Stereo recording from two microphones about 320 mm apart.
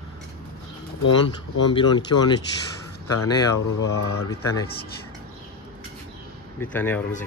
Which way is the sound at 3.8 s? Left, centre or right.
Centre.